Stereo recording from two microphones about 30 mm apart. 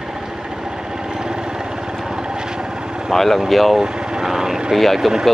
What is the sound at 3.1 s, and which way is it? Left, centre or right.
Speech, centre.